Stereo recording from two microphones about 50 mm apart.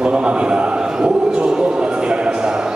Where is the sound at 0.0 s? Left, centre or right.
Right.